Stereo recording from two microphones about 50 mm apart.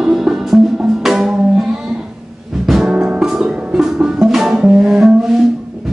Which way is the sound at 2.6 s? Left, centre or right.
Centre.